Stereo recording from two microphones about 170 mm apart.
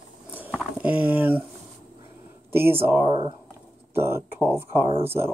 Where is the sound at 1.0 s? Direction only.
10° right (ahead or behind).